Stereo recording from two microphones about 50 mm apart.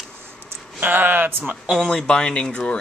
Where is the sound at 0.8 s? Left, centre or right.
Right.